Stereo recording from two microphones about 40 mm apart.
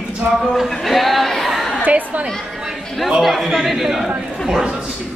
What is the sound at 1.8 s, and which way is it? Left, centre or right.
Speech, right.